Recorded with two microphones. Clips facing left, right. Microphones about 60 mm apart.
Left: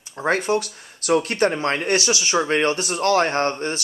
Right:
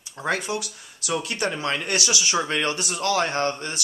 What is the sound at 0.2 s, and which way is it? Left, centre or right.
Speech, left.